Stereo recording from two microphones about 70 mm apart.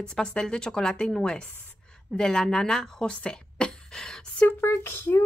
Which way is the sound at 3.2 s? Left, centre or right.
Centre.